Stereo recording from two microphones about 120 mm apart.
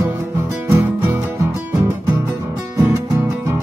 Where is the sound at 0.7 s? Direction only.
20° right (ahead or behind).